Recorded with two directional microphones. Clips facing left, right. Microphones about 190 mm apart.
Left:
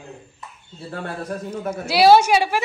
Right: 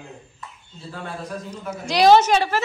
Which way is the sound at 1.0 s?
55° left (ahead or behind).